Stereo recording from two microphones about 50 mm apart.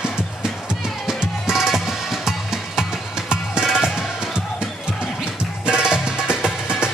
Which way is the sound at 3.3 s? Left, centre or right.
Centre.